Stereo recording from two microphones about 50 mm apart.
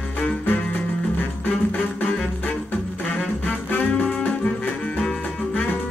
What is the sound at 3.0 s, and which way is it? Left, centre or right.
Music, left.